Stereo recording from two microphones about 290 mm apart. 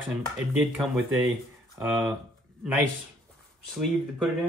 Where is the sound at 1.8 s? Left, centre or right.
Centre.